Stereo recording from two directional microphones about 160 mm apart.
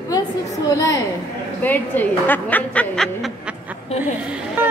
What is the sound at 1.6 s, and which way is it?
A woman's voice, 10° left (ahead or behind).